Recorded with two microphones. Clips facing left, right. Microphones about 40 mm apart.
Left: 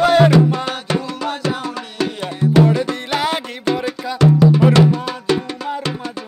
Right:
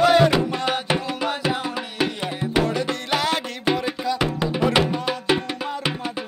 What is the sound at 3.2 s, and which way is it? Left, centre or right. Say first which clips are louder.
Music: left 3 dB; centre.